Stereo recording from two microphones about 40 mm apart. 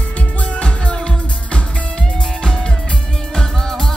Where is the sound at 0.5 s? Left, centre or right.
Left.